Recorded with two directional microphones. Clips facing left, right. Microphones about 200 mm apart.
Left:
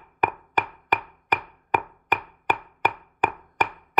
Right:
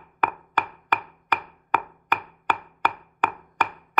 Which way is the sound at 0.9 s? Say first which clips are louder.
Left 1 dB; 15° left (ahead or behind).